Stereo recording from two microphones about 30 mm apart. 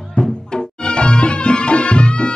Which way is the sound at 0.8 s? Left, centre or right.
Left.